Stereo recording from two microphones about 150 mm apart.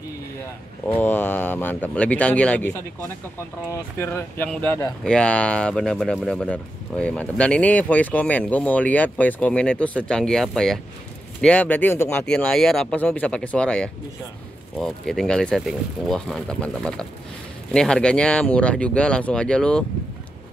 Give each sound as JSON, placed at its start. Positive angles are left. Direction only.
{"t": 0.8, "sound": "speech", "side_deg": 10}
{"t": 4.0, "sound": "speech", "side_deg": 20}